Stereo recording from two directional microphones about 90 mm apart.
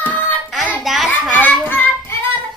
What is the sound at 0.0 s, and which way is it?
Child singing, 15° left (ahead or behind).